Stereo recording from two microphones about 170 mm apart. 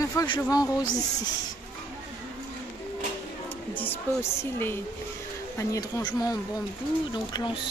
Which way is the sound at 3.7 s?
10° left (ahead or behind).